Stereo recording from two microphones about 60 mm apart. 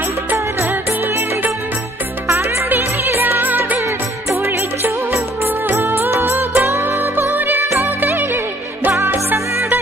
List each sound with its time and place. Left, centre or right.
0.3 s music: right
2.2 s music: right
2.7 s music: right
4.3 s music: right
7.8 s music of bollywood: right
8.9 s music: right